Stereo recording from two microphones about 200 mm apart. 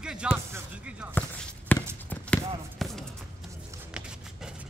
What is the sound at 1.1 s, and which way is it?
Basketball bounce, 10° left (ahead or behind).